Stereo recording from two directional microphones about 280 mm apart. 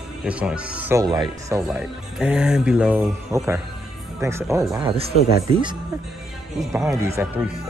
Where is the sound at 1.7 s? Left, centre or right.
Centre.